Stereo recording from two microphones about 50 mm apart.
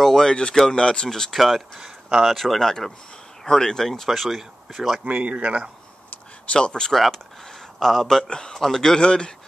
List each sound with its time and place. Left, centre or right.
0.0 s speech: centre
5.0 s speech: right
6.5 s speech: centre
6.9 s speech: centre